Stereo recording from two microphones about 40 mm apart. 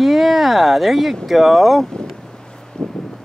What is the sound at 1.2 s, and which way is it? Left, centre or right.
Speech, centre.